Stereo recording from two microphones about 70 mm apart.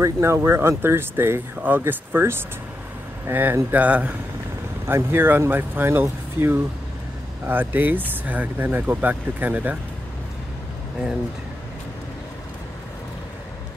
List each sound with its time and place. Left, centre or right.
0.0 s speech: right
4.8 s speech: right